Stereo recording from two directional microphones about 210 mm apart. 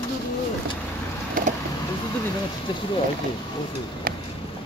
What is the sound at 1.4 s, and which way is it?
Vehicle, 40° right (ahead or behind).